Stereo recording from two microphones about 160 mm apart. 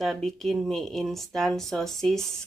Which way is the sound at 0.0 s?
Centre (ahead or behind).